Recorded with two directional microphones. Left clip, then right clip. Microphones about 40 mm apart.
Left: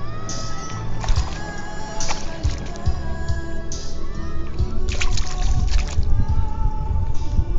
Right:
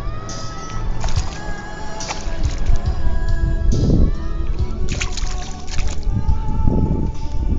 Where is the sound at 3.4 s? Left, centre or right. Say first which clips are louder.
Right 8 dB; right.